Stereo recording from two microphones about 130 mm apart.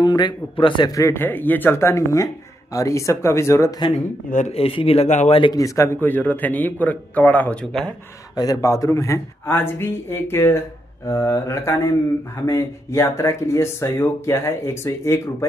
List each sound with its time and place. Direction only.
0.0 s speech: 35° left (ahead or behind)
4.3 s speech: 70° left (ahead or behind)
4.6 s speech: 50° left (ahead or behind); by 5.4 s 65° left (ahead or behind)
5.4 s speech: 25° left (ahead or behind)
5.9 s speech: 15° left (ahead or behind)
8.4 s speech: 25° left (ahead or behind)